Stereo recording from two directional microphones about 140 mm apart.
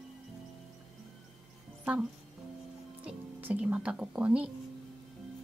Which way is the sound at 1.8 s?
10° right (ahead or behind).